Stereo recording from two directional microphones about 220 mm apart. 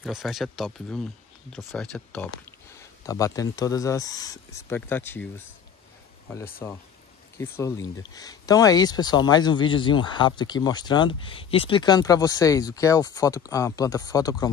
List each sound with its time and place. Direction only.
0.0 s speech: centre (ahead or behind)
6.6 s speech: 10° left (ahead or behind)